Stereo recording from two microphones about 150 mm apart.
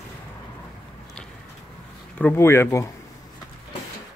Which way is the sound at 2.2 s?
15° left (ahead or behind).